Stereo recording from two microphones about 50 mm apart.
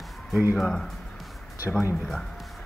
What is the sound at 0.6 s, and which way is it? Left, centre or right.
Speech, centre.